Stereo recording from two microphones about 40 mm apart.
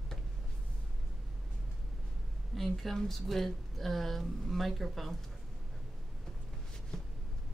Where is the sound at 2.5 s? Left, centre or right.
Centre.